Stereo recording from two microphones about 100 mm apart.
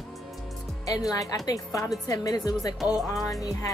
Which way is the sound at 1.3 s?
35° left (ahead or behind).